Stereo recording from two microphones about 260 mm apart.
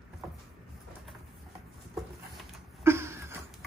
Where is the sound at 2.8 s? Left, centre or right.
Centre.